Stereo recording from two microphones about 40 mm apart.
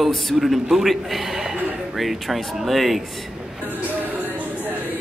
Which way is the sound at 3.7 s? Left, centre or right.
Right.